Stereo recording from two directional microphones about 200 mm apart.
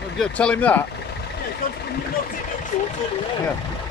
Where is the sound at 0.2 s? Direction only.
5° left (ahead or behind).